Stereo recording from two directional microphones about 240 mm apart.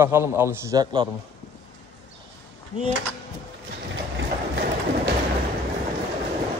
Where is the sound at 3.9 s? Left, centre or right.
Right.